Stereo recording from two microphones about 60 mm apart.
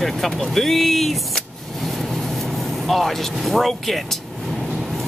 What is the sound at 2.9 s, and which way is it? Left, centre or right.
Speech, centre.